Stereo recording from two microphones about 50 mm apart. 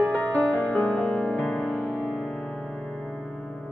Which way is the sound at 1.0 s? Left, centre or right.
Centre.